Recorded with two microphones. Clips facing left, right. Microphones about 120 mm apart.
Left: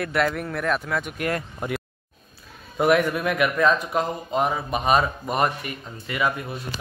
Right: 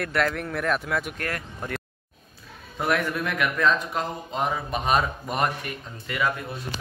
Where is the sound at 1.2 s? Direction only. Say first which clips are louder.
Left 5 dB; 20° left (ahead or behind).